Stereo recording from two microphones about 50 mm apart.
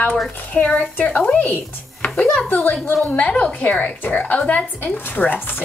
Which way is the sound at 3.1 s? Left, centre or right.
Left.